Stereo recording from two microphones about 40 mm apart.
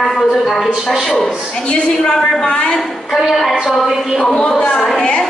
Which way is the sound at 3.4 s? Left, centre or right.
Centre.